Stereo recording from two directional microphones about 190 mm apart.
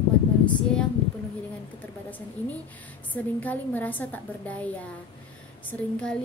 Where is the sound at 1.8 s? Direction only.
10° left (ahead or behind).